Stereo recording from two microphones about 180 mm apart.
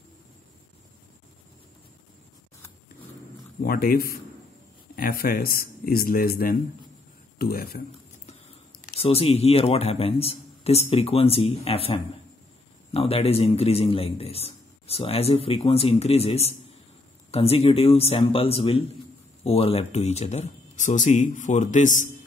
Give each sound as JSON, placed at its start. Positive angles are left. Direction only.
{"t": 3.6, "sound": "speech", "side_deg": 55}
{"t": 9.0, "sound": "a man's voice", "side_deg": 35}